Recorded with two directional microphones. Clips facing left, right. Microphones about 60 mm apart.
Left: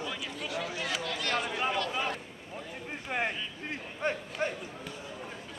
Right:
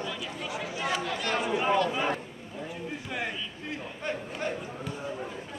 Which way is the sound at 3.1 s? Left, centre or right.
Left.